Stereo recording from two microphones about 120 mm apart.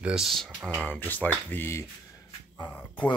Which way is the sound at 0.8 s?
15° left (ahead or behind).